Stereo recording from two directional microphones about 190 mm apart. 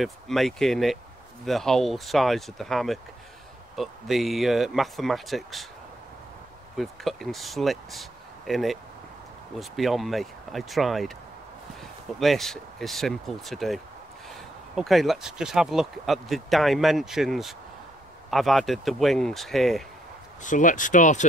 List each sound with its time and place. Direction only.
0.0 s speech: centre (ahead or behind)
6.8 s speech: centre (ahead or behind)
12.2 s speech: centre (ahead or behind)
14.8 s speech: centre (ahead or behind)
20.4 s speech: 40° left (ahead or behind)